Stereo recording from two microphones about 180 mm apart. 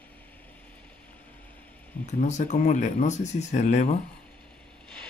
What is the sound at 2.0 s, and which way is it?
Speech, 40° left (ahead or behind).